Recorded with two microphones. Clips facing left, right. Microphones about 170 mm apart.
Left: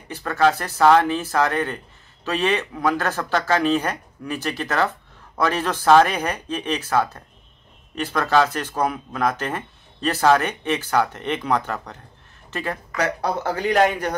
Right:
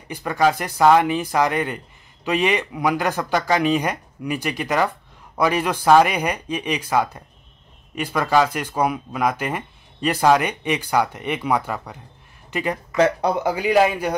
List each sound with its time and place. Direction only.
0.1 s speech: 15° right (ahead or behind)
12.4 s a sound: 15° right (ahead or behind)
12.9 s speech: 20° right (ahead or behind)